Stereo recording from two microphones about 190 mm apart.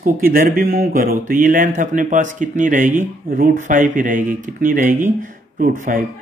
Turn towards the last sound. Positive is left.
turn(degrees=-45)  # may be behind; listen again after turning